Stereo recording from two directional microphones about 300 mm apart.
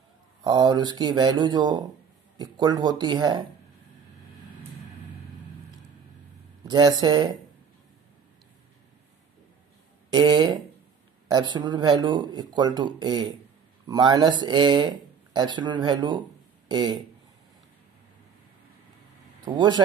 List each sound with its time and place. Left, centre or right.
0.4 s speech: centre
6.7 s speech: centre
10.1 s speech: centre
19.4 s speech: centre